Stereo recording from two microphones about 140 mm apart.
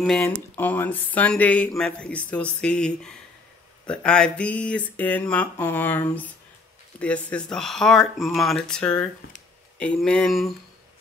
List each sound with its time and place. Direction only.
0.2 s speech: 10° left (ahead or behind)